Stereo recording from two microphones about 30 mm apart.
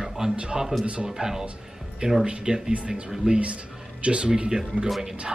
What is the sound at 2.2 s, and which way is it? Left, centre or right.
Speech, right.